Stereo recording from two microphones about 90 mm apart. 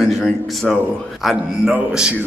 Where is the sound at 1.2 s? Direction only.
5° right (ahead or behind).